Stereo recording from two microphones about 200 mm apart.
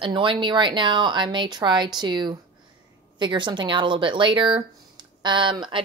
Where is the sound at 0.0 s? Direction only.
25° right (ahead or behind).